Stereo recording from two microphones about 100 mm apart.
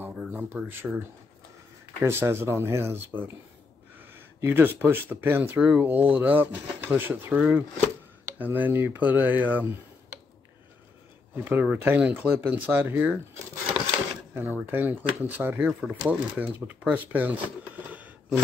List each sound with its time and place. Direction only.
0.3 s speech: 20° right (ahead or behind)
2.0 s speech: 25° right (ahead or behind)
11.3 s speech: 20° right (ahead or behind)
14.3 s speech: 20° right (ahead or behind)
17.8 s a sound: 15° right (ahead or behind)